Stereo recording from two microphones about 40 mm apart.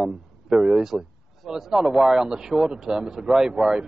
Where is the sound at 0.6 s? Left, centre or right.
Right.